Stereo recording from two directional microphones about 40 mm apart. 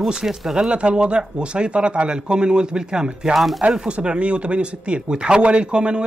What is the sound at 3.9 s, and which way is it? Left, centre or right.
Speech, right.